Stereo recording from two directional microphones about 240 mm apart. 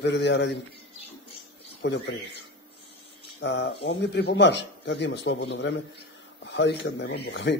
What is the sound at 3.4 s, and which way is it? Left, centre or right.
Speech, left.